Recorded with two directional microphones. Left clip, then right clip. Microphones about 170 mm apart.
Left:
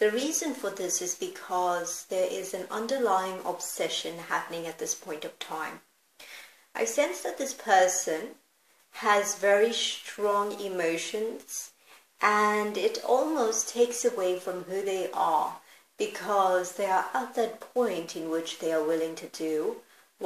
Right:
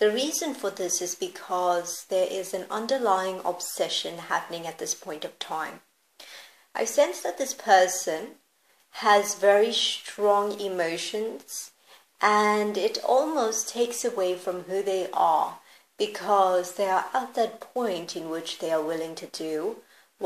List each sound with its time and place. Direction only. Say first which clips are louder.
0.0 s speech: right 3 dB; 40° right (ahead or behind)
12.2 s speech: right 3 dB; 40° right (ahead or behind)